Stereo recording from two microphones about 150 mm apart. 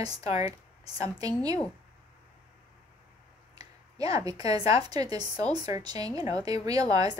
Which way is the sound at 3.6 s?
25° right (ahead or behind).